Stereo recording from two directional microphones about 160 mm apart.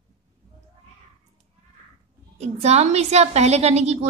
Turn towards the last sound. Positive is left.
turn(degrees=-40)  # may be behind; listen again after turning